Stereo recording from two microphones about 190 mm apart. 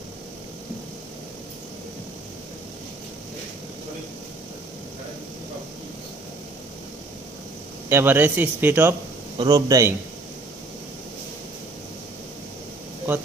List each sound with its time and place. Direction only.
7.9 s a man's voice: 10° right (ahead or behind)
13.1 s speech: 10° right (ahead or behind)